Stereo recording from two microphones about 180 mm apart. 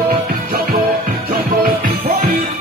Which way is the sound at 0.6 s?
55° right (ahead or behind).